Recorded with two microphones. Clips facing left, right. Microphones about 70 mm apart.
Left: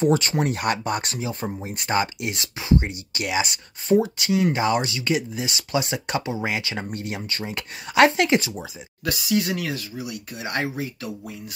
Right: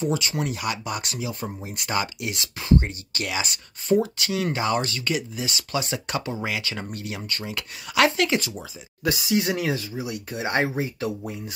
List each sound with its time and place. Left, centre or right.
0.0 s speech: left
2.6 s speech: centre
9.0 s speech: right